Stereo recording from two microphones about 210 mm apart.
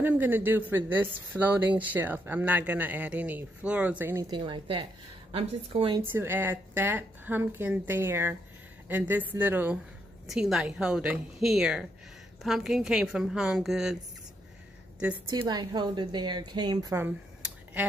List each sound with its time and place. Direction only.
0.0 s speech: 10° right (ahead or behind)
4.3 s a woman's voice: 25° right (ahead or behind)
6.0 s a woman's voice: 10° right (ahead or behind)
15.2 s a woman's voice: 20° right (ahead or behind)